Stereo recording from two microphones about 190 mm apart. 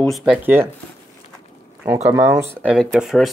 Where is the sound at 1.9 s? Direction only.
10° right (ahead or behind).